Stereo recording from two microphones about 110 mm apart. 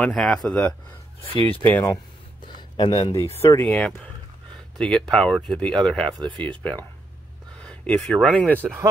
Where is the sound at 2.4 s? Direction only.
45° left (ahead or behind).